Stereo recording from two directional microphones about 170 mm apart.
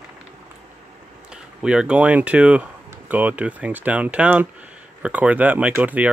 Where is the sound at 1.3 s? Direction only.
5° right (ahead or behind).